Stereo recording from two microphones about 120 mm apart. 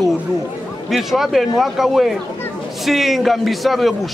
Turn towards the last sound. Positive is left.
turn(degrees=0)  # may be behind; listen again after turning